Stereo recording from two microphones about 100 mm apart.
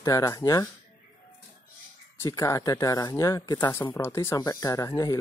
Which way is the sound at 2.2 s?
30° left (ahead or behind).